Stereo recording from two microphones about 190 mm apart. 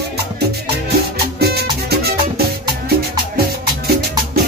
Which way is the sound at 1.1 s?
55° right (ahead or behind).